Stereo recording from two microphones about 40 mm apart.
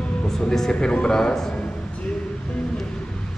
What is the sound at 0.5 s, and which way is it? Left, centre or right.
Speech, centre.